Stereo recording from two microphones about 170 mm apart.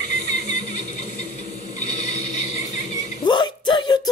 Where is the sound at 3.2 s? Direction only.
25° left (ahead or behind).